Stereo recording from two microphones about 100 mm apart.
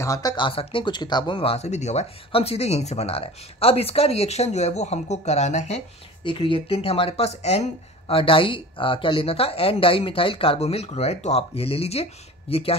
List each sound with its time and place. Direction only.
0.0 s speech: 35° left (ahead or behind)
0.5 s speech: 65° left (ahead or behind); by 1.4 s 50° left (ahead or behind)
1.4 s speech: 85° left
6.2 s speech: 65° left (ahead or behind); by 7.6 s 90° left
8.1 s speech: 65° left (ahead or behind)